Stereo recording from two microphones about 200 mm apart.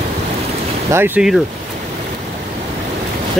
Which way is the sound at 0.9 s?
10° right (ahead or behind).